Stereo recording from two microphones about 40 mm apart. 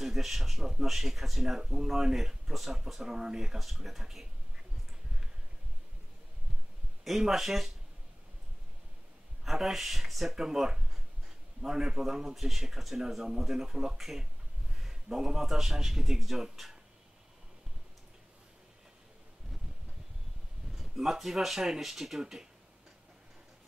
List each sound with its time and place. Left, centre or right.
0.0 s speech: centre
3.1 s speech: centre
7.1 s speech: centre
9.4 s a man's voice: centre
20.7 s speech: centre
22.2 s speech: centre